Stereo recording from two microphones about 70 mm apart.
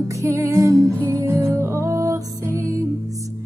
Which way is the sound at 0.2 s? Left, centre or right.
Right.